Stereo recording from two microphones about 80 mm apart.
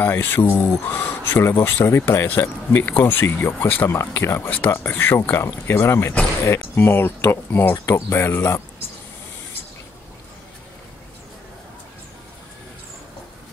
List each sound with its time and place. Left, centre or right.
0.0 s speech: left